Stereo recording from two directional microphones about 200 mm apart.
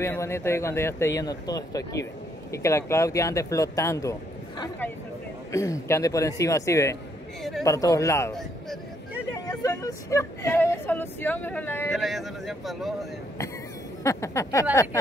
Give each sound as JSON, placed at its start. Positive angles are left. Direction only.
{"t": 0.0, "sound": "speech", "side_deg": 10}
{"t": 8.3, "sound": "a sound", "side_deg": 0}
{"t": 9.5, "sound": "speech", "side_deg": 15}
{"t": 11.9, "sound": "speech", "side_deg": 0}
{"t": 14.0, "sound": "speech", "side_deg": 15}